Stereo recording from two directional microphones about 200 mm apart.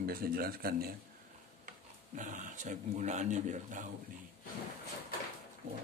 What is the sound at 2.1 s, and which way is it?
Speech, 40° right (ahead or behind).